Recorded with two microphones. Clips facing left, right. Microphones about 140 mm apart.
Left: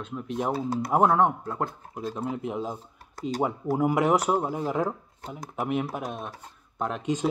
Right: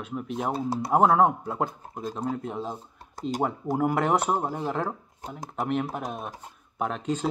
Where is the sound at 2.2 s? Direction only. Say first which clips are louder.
Even; 10° left (ahead or behind).